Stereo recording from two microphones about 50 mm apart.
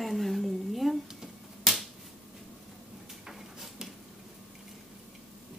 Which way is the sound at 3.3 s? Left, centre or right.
Centre.